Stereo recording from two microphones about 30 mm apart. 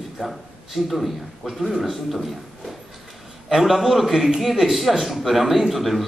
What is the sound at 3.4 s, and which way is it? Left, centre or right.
A man's voice, centre.